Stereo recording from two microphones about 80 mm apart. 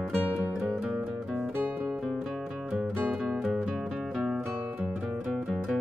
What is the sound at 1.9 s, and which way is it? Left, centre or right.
Music, centre.